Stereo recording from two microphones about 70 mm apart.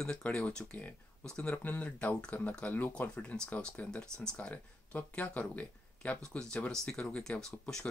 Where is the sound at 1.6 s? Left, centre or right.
Left.